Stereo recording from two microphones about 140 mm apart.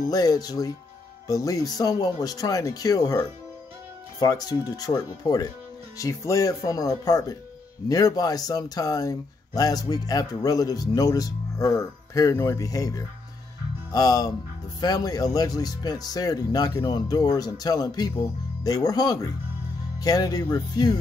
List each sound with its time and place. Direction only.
0.0 s speech: 25° left (ahead or behind)